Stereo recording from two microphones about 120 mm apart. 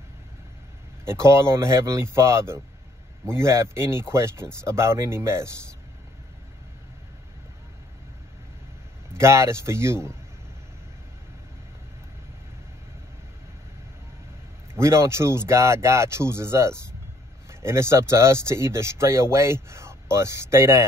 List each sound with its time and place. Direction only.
1.0 s speech: 25° right (ahead or behind)
9.1 s speech: 25° right (ahead or behind)
14.8 s speech: 25° right (ahead or behind)